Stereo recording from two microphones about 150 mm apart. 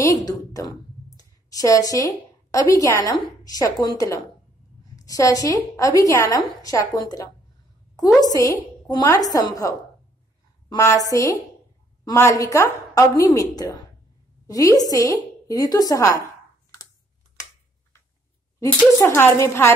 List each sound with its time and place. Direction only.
0.0 s a woman's voice: 25° left (ahead or behind)
10.9 s a woman's voice: 20° left (ahead or behind)
18.6 s a woman's voice: 20° left (ahead or behind)